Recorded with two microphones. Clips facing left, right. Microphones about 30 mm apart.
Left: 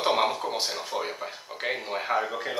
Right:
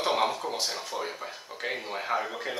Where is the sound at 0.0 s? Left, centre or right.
Centre.